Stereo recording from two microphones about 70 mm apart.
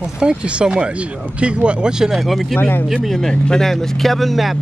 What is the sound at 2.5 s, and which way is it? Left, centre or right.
Speech, left.